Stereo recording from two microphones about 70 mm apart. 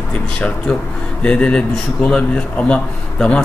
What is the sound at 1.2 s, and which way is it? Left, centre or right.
Speech, centre.